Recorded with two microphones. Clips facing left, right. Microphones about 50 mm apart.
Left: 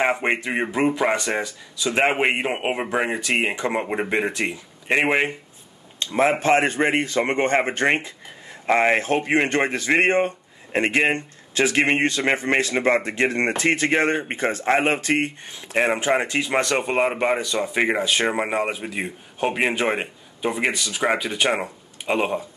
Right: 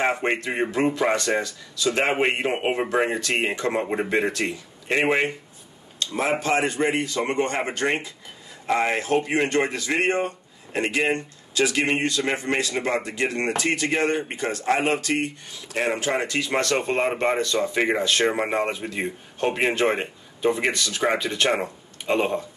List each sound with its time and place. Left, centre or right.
0.0 s a man's voice: left